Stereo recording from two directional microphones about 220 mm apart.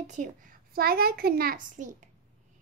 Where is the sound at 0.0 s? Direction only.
35° right (ahead or behind).